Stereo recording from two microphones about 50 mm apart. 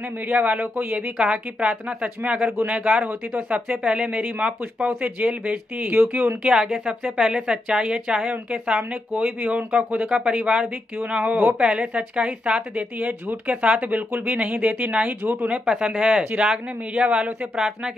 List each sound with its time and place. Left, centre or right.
0.3 s speech: right
1.1 s speech: right
3.8 s speech: right
6.4 s speech: right
10.1 s speech: right
15.6 s speech: centre
17.6 s speech: centre